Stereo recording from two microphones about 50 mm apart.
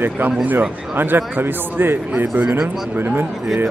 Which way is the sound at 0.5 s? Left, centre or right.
Right.